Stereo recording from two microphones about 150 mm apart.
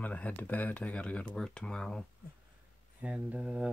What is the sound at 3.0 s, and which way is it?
Speech, 10° right (ahead or behind).